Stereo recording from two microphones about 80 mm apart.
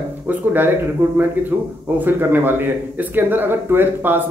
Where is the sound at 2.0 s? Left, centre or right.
Right.